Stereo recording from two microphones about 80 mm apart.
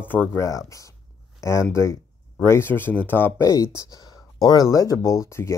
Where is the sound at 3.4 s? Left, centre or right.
Left.